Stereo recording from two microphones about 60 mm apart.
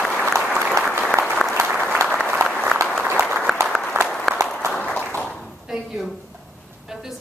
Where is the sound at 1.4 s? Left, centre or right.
Centre.